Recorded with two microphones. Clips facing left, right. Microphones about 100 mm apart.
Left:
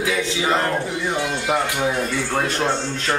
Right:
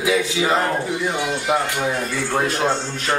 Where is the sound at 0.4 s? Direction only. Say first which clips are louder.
Left 1 dB; 5° right (ahead or behind).